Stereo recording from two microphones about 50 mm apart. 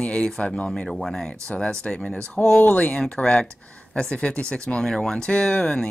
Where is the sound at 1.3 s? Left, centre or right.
Centre.